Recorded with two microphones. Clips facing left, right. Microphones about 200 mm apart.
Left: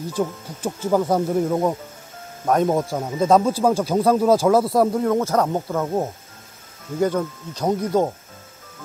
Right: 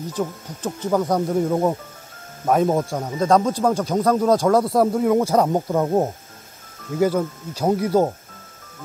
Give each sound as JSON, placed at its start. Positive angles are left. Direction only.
{"t": 0.1, "sound": "speech", "side_deg": 10}
{"t": 5.0, "sound": "speech", "side_deg": -10}
{"t": 7.0, "sound": "speech", "side_deg": -5}